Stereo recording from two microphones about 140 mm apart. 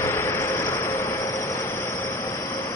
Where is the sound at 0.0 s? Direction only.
20° left (ahead or behind).